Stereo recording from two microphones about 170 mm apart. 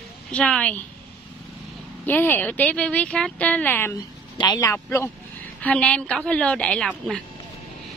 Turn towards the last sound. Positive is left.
turn(degrees=5)  # may be behind; listen again after turning